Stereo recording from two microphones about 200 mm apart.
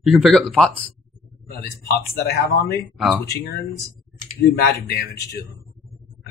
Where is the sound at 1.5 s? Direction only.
50° left (ahead or behind).